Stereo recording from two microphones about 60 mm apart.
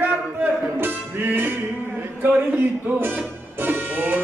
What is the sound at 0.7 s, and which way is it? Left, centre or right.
Music, right.